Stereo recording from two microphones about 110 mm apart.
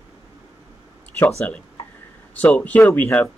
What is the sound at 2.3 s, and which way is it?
Speech, 15° left (ahead or behind).